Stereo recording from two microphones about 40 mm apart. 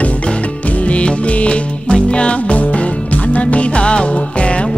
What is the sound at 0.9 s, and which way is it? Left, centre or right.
Music, left.